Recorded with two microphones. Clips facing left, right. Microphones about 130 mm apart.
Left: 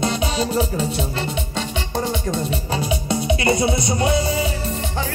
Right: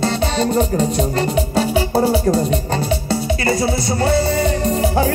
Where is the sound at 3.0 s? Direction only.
20° left (ahead or behind).